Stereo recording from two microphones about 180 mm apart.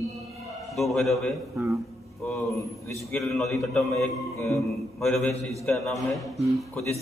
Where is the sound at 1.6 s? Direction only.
15° right (ahead or behind).